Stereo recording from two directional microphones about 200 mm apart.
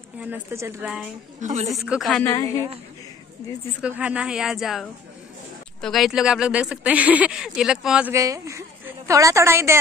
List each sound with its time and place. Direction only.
0.2 s speech: 10° right (ahead or behind)
0.8 s a woman's voice: 5° right (ahead or behind)
1.4 s a woman's voice: 35° right (ahead or behind)
1.7 s a woman's voice: centre (ahead or behind)
2.2 s a woman's voice: 15° left (ahead or behind)
3.8 s a woman's voice: 5° right (ahead or behind)